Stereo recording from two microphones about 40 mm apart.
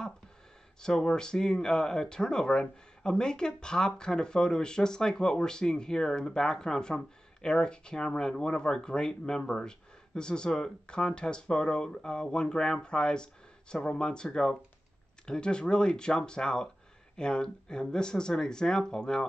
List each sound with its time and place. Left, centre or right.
0.7 s speech: centre